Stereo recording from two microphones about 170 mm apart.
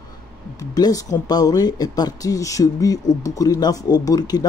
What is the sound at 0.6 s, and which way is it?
Speech, 20° left (ahead or behind).